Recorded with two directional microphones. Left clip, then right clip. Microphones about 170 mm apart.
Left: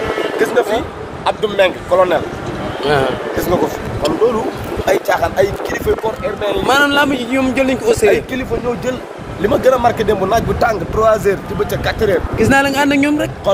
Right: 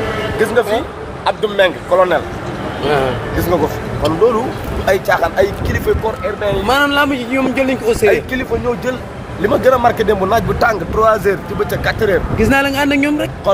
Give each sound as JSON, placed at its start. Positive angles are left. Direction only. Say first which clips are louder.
{"t": 0.4, "sound": "speech", "louder": "right 1 dB", "side_deg": 0}
{"t": 4.8, "sound": "speech", "louder": "right 1 dB", "side_deg": 10}
{"t": 9.4, "sound": "speech", "louder": "right 1 dB", "side_deg": 5}
{"t": 11.0, "sound": "speech", "louder": "even", "side_deg": 15}